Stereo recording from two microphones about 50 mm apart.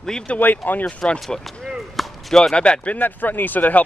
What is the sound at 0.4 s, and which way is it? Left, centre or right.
Speech, left.